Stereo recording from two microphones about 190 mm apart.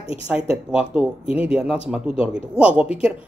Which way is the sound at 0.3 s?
5° right (ahead or behind).